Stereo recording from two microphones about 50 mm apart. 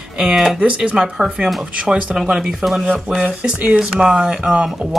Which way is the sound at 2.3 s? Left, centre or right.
Centre.